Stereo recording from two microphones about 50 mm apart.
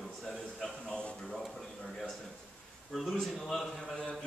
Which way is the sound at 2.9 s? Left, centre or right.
Centre.